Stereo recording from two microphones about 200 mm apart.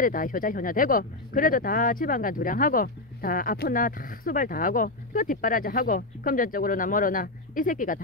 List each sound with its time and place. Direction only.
0.0 s speech: 45° left (ahead or behind)